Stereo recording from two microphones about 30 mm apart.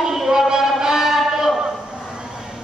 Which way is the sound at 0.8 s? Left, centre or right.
Centre.